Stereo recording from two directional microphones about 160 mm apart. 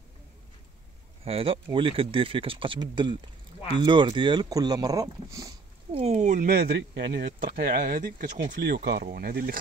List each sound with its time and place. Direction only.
1.2 s speech: 35° right (ahead or behind); by 5.5 s 20° right (ahead or behind)
5.9 s speech: 45° right (ahead or behind)
6.5 s speech: 85° right; by 8.3 s 65° right (ahead or behind)
8.5 s speech: 85° right; by 9.6 s 70° right (ahead or behind)